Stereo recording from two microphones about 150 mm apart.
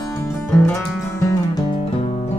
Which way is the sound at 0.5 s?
5° left (ahead or behind).